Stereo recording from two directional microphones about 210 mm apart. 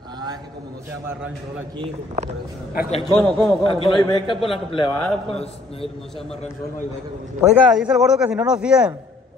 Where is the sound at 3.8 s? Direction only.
20° left (ahead or behind).